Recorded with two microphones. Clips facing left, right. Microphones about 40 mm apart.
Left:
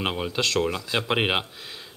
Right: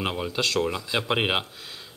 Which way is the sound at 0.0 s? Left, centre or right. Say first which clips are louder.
Left 1 dB; centre.